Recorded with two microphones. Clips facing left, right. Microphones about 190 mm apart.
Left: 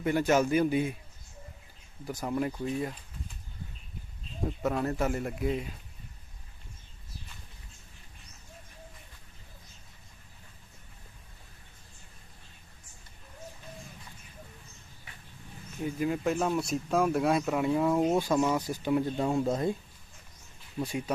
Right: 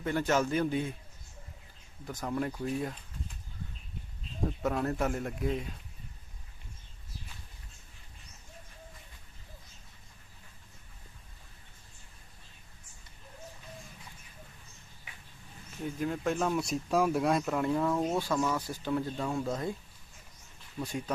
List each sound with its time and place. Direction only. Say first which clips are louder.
0.0 s speech: left 4 dB; 10° left (ahead or behind)
2.0 s speech: left 2 dB; 10° left (ahead or behind)
4.5 s speech: left 1 dB; centre (ahead or behind)
15.8 s speech: left 3 dB; 5° left (ahead or behind)
19.1 s speech: left 5 dB; 25° left (ahead or behind)
20.8 s speech: left 3 dB; 10° left (ahead or behind)